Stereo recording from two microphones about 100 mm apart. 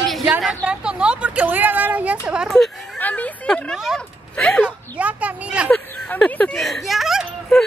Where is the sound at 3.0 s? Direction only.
15° left (ahead or behind).